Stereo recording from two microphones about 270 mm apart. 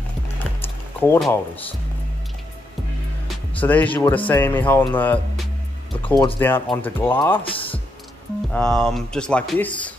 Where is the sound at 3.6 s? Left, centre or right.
Centre.